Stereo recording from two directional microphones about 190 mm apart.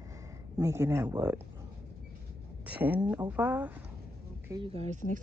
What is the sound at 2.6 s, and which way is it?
Speech, 5° right (ahead or behind).